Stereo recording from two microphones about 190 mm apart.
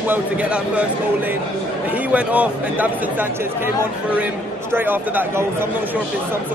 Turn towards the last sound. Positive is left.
turn(degrees=-10)  # may be behind; listen again after turning